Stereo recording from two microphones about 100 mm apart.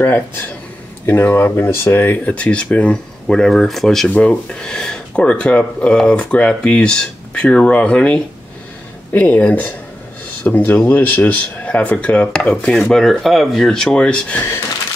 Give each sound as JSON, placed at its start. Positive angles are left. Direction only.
{"t": 1.0, "sound": "speech", "side_deg": 20}